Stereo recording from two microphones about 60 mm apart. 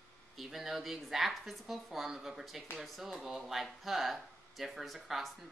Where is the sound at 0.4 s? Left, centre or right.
Centre.